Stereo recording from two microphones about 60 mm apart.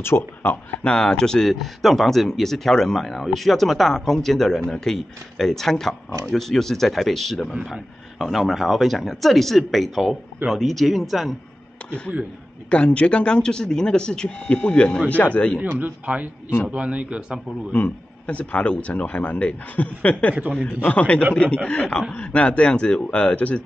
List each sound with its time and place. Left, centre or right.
0.0 s speech: left
0.8 s speech: centre
1.5 s speech: centre
12.6 s speech: left
15.8 s a man's voice: right
17.7 s speech: left